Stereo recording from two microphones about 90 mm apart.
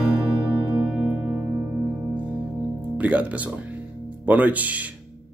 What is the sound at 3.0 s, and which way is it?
Music, 15° right (ahead or behind).